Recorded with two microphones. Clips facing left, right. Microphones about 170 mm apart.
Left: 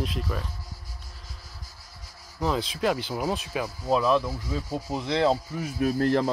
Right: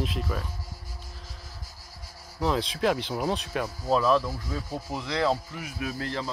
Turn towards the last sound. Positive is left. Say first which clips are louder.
# left 9 dB
turn(degrees=45)  # may be behind; listen again after turning